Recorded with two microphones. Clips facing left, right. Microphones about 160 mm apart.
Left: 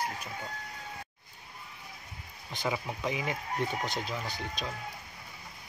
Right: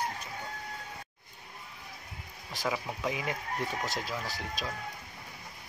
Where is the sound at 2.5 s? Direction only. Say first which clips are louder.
Even; centre (ahead or behind).